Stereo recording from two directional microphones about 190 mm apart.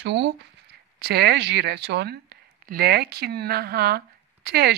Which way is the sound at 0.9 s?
55° right (ahead or behind).